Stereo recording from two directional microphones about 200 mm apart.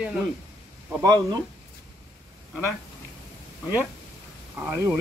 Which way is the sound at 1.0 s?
20° right (ahead or behind).